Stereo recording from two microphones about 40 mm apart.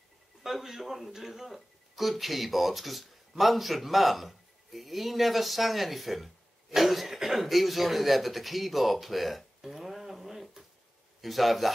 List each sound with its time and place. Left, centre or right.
0.4 s speech: centre